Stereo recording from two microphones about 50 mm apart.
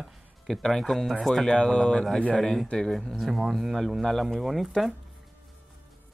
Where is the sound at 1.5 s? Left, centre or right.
Centre.